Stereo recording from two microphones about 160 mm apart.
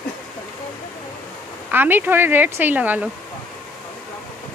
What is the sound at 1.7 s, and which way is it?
Speech, 10° right (ahead or behind).